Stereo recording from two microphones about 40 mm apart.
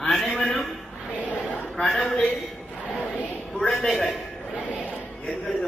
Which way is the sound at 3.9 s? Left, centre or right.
Centre.